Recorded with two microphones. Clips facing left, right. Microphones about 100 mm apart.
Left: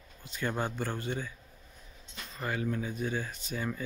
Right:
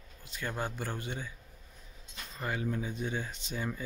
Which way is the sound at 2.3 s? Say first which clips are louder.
Left 1 dB; 15° right (ahead or behind).